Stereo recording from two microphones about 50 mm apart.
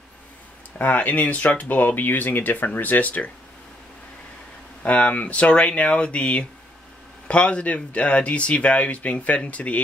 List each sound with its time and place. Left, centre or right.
0.7 s speech: left
4.8 s speech: left